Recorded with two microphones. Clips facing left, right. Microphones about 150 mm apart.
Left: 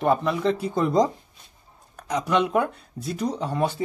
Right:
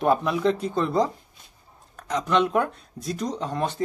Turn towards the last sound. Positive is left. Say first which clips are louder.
# left 2 dB
turn(degrees=5)  # may be behind; listen again after turning